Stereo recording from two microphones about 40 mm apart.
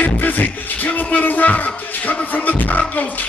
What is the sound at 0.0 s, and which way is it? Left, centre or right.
Music, left.